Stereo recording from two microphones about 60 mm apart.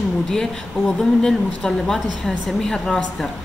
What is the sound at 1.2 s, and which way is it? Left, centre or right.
Speech, centre.